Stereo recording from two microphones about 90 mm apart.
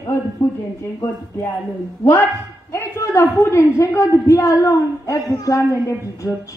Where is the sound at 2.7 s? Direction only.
35° left (ahead or behind).